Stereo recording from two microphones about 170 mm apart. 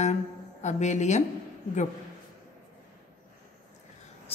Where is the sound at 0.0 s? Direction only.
40° left (ahead or behind).